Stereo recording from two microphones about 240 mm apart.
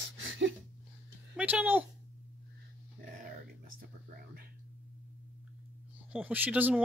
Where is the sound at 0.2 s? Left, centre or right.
Right.